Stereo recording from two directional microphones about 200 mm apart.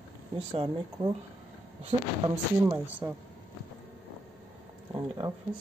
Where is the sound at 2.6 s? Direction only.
10° right (ahead or behind).